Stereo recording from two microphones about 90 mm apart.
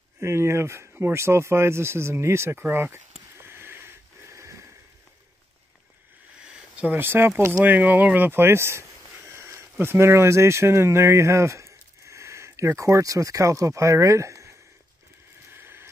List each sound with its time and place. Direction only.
0.2 s speech: 30° right (ahead or behind)
6.8 s speech: 20° right (ahead or behind)
15.5 s a sound: 25° right (ahead or behind)